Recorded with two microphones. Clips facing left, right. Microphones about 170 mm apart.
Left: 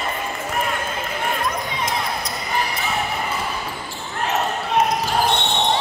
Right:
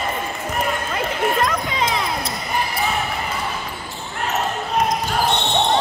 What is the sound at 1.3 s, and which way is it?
Music, 90° right.